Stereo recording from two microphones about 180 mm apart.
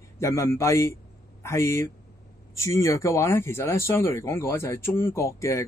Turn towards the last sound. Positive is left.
turn(degrees=15)  # may be behind; listen again after turning